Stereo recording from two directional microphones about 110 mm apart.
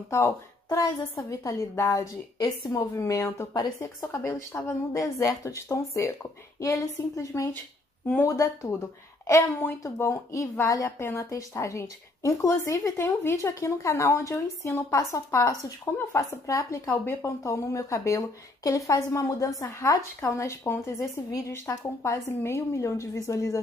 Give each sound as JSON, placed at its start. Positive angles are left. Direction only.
{"t": 0.1, "sound": "speech", "side_deg": 30}
{"t": 2.3, "sound": "a woman's voice", "side_deg": 40}